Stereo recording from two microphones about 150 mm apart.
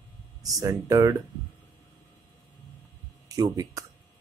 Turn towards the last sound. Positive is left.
turn(degrees=-25)  # may be behind; listen again after turning